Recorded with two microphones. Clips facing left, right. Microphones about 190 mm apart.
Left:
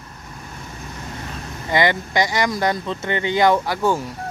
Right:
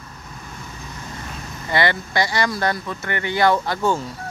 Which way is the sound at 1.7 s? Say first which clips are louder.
Left 2 dB; 15° left (ahead or behind).